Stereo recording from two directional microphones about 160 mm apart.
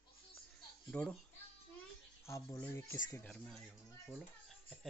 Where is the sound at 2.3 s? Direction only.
15° left (ahead or behind).